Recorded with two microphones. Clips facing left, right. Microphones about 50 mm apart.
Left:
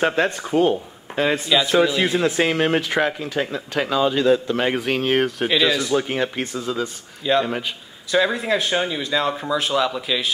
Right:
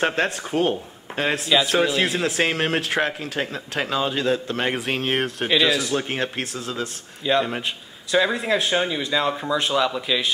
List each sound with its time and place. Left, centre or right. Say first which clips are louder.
0.1 s speech: left 3 dB; centre
0.7 s a man's voice: left 3 dB; centre
4.3 s speech: left 4 dB; centre
6.0 s a man's voice: left 3 dB; centre
6.8 s speech: left 2 dB; centre